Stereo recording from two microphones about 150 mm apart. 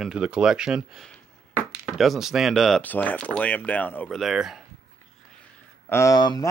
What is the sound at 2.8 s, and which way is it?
Speech, 10° left (ahead or behind).